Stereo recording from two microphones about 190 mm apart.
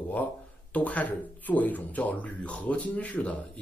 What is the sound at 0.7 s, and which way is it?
Speech, 10° left (ahead or behind).